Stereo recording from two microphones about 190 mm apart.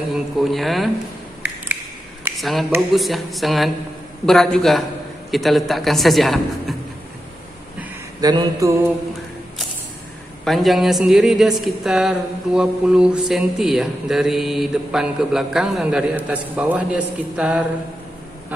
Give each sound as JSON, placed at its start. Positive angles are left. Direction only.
{"t": 0.1, "sound": "speech", "side_deg": 0}
{"t": 2.3, "sound": "speech", "side_deg": 0}
{"t": 8.2, "sound": "mantra", "side_deg": -20}
{"t": 10.4, "sound": "speech", "side_deg": 0}